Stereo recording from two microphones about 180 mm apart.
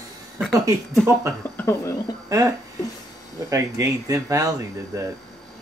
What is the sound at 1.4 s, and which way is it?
Speech, 10° left (ahead or behind).